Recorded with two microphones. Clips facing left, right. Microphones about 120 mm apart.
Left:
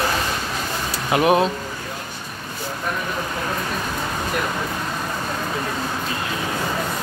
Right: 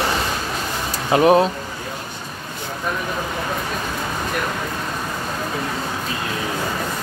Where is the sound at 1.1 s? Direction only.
25° right (ahead or behind).